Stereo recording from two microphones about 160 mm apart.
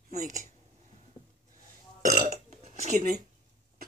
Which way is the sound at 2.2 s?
45° right (ahead or behind).